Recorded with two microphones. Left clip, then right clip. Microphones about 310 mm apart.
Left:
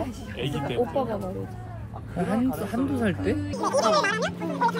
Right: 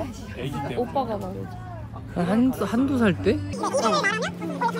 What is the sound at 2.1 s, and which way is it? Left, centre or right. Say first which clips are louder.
Speech: right 3 dB; right.